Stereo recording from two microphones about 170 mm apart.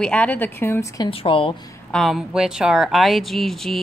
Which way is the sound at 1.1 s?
30° left (ahead or behind).